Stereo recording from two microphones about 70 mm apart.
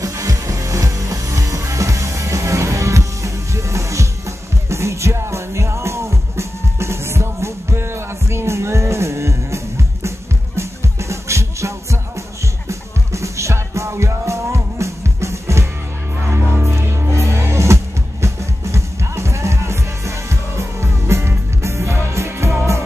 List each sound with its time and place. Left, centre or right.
0.0 s music: right